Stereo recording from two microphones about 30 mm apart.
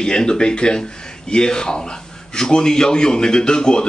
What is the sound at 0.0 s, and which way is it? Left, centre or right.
Speech, left.